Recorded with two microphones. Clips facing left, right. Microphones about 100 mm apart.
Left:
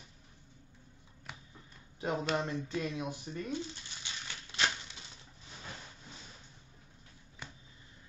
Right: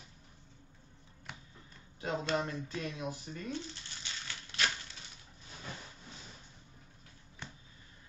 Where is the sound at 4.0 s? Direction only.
20° left (ahead or behind).